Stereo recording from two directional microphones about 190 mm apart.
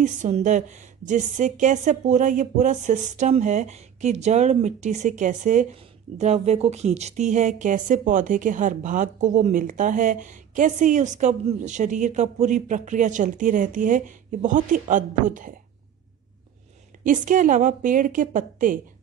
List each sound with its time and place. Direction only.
0.0 s a woman's voice: 40° right (ahead or behind)
17.0 s a woman's voice: 45° right (ahead or behind)